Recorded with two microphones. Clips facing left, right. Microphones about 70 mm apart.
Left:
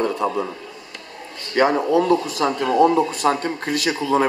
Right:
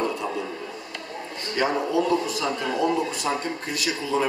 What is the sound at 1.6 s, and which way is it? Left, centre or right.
Speech, left.